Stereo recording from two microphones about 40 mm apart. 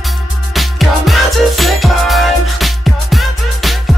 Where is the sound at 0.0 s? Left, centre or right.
Centre.